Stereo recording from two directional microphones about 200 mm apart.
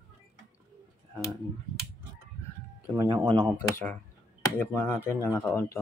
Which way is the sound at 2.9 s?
25° right (ahead or behind).